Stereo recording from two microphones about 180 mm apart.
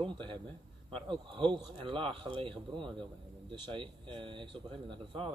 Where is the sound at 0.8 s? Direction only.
30° right (ahead or behind).